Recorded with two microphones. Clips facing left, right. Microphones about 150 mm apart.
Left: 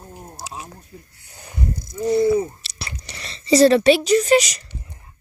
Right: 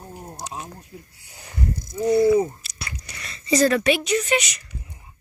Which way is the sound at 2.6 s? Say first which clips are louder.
Left 1 dB; 30° left (ahead or behind).